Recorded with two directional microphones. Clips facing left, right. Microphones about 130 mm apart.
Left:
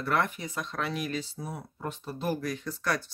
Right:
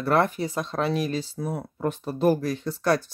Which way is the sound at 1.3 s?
60° right (ahead or behind).